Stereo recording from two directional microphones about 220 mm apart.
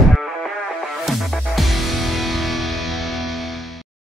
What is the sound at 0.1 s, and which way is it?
Music, centre (ahead or behind).